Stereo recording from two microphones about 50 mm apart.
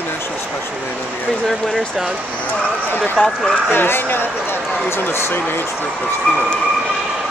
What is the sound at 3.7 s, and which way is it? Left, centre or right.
Speech, left.